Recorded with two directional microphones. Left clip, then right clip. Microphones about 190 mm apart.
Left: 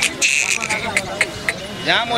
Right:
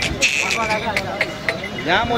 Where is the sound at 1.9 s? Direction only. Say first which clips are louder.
Left 1 dB; 35° right (ahead or behind).